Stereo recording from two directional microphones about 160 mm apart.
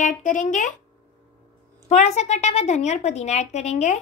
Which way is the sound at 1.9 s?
40° left (ahead or behind).